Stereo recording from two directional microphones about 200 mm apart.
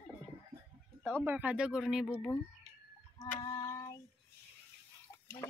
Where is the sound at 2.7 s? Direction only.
35° right (ahead or behind).